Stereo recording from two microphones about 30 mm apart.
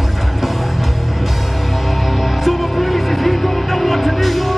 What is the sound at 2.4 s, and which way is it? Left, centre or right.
Music, centre.